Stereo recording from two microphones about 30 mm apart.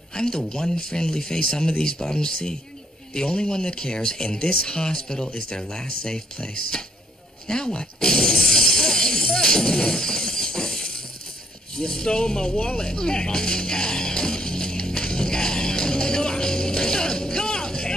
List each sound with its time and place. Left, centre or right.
0.1 s speech: left
7.4 s shatter: left
11.7 s speech: left
12.7 s music: left